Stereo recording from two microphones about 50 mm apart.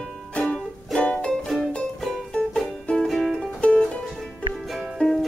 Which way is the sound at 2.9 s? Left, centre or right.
Centre.